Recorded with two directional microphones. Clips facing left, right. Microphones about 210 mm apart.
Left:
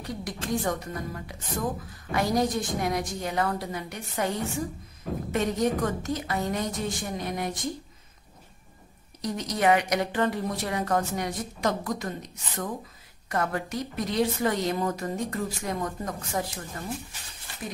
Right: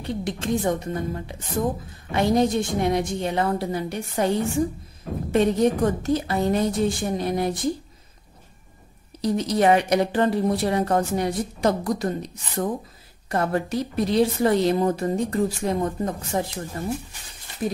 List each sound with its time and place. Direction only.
0.0 s a woman's voice: 25° right (ahead or behind)
9.2 s a woman's voice: 30° right (ahead or behind)